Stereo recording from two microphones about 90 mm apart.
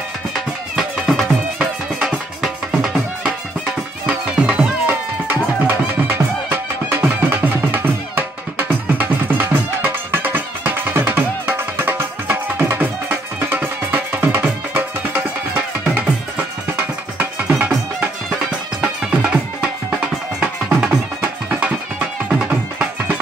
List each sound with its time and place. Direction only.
0.3 s music: centre (ahead or behind)
4.8 s music: 25° right (ahead or behind)